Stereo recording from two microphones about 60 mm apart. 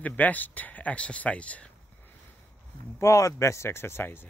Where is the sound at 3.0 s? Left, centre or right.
Left.